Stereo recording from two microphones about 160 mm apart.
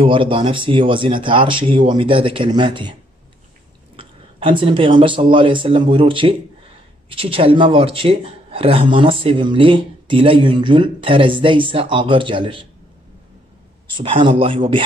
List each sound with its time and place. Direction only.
0.0 s speech: 35° right (ahead or behind)
13.9 s speech: 30° right (ahead or behind)